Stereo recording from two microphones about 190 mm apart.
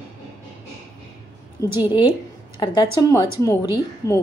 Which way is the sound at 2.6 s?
20° left (ahead or behind).